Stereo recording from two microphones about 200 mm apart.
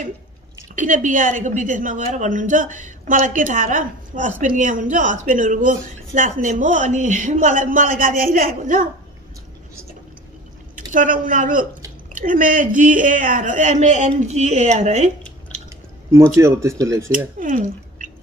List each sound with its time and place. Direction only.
0.7 s a woman's voice: 40° right (ahead or behind)
10.9 s a woman's voice: 40° right (ahead or behind)
16.3 s speech: 15° right (ahead or behind)
17.4 s speech: 40° right (ahead or behind)